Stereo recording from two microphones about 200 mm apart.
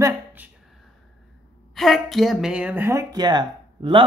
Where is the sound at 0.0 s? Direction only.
10° right (ahead or behind).